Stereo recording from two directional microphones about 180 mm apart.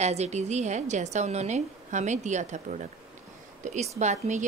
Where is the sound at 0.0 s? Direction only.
40° right (ahead or behind).